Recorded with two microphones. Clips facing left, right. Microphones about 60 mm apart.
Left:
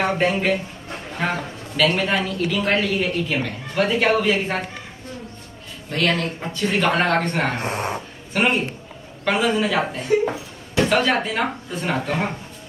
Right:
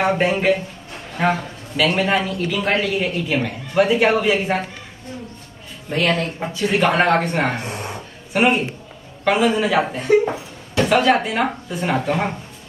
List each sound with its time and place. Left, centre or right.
0.0 s a man's voice: centre
5.9 s a man's voice: centre
7.6 s speech: left
8.3 s speech: centre